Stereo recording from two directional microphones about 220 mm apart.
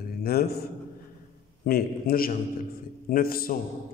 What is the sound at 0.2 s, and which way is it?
Speech, 45° left (ahead or behind).